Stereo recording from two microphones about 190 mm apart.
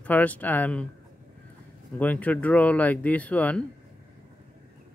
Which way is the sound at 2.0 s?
10° left (ahead or behind).